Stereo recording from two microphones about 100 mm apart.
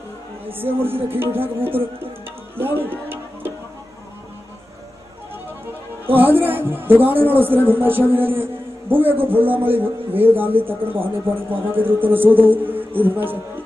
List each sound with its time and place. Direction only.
0.5 s a man's voice: 20° right (ahead or behind)
2.5 s music: 20° right (ahead or behind)
6.0 s a man's voice: 20° right (ahead or behind)